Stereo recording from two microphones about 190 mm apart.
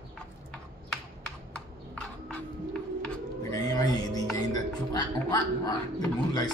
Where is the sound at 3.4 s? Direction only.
20° left (ahead or behind).